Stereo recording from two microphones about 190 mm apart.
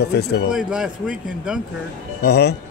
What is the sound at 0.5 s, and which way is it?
Speech, 5° right (ahead or behind).